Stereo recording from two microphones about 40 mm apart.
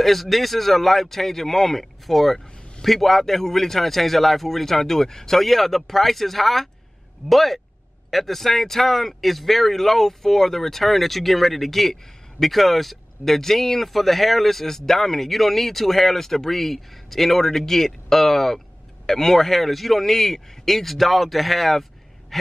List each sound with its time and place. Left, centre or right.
0.0 s speech: centre
2.4 s vehicle: left
2.8 s speech: centre
22.3 s gasp: centre